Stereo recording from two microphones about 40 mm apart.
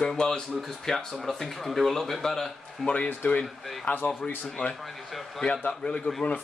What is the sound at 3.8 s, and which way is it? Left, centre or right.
Speech, left.